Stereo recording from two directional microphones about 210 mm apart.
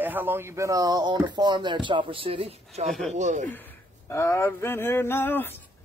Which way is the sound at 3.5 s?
10° left (ahead or behind).